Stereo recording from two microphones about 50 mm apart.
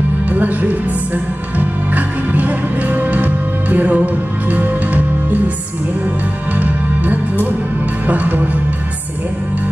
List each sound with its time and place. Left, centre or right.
0.3 s music: right
6.5 s music: right